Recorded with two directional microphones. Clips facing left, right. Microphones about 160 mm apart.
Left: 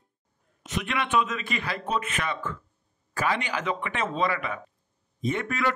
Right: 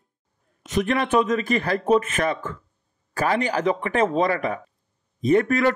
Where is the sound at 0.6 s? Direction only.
40° right (ahead or behind).